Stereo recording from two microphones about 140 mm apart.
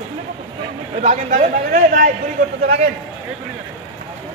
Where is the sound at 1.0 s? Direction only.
65° right (ahead or behind).